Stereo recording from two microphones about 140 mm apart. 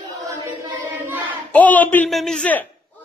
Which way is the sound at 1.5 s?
10° left (ahead or behind).